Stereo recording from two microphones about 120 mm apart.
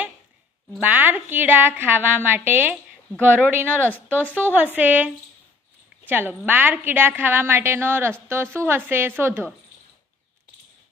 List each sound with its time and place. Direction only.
0.7 s a woman's voice: 15° right (ahead or behind)